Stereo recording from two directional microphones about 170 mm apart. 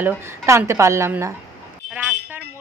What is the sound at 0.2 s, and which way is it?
Speech, 15° right (ahead or behind).